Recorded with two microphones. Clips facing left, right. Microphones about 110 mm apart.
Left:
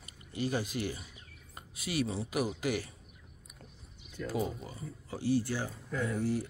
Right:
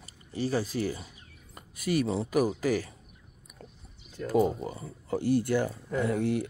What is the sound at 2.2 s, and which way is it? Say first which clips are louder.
Speech: right 6 dB; 45° right (ahead or behind).